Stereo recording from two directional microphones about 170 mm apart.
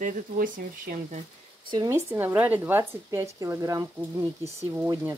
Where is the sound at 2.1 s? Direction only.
10° right (ahead or behind).